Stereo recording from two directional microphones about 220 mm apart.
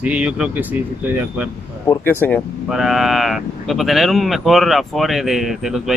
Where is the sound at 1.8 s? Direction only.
10° left (ahead or behind).